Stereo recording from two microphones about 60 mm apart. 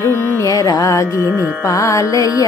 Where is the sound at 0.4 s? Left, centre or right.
Left.